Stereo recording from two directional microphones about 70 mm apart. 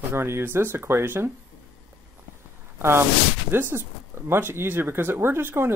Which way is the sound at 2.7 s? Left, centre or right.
Right.